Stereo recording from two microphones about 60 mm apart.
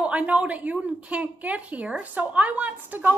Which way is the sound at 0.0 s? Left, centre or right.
Right.